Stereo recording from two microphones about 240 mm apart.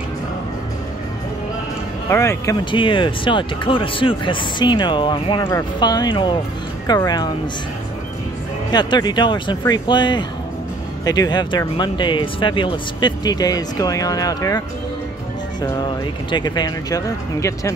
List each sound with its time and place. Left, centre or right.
2.0 s speech: centre
8.7 s speech: centre
15.6 s speech: centre